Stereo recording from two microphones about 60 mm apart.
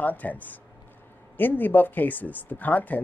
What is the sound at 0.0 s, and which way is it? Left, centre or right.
Speech, left.